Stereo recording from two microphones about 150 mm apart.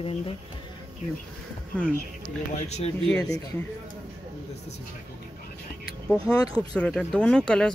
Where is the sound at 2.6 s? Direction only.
45° left (ahead or behind).